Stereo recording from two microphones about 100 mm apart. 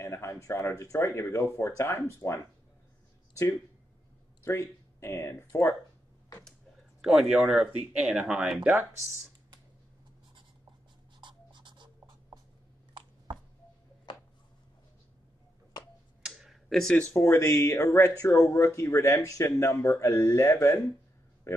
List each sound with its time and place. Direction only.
0.0 s speech: 30° left (ahead or behind)
4.5 s speech: 25° left (ahead or behind)
7.0 s speech: 5° right (ahead or behind)
11.1 s writing: 50° right (ahead or behind)
16.2 s tick-tock: 5° right (ahead or behind)
17.2 s speech: 30° left (ahead or behind)